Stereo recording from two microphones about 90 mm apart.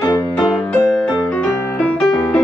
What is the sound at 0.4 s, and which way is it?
Music, centre (ahead or behind).